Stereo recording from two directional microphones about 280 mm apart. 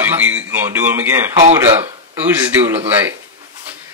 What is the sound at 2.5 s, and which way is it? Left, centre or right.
Speech, centre.